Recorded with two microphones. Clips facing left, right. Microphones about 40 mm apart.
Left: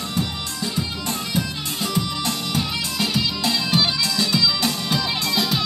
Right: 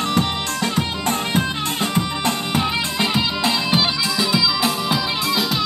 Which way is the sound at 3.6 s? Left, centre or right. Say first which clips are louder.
Right 2 dB; centre.